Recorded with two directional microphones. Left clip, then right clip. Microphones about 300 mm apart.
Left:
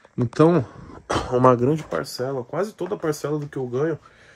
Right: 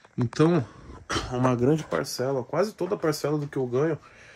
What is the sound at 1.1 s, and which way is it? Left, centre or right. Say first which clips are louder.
Speech: left 9 dB; centre.